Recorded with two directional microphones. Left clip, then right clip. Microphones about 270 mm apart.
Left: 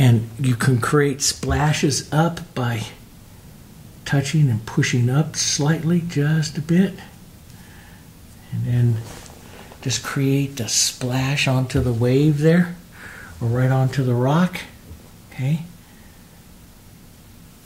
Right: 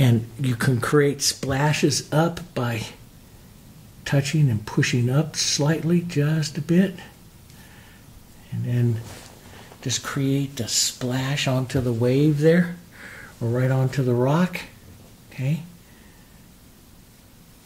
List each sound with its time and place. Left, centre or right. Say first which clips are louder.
0.0 s speech: left 2 dB; right
4.0 s speech: left 1 dB; right
9.8 s speech: left 2 dB; right